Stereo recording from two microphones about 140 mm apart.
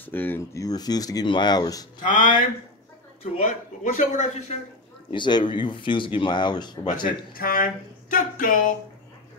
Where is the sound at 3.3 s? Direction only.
70° left (ahead or behind).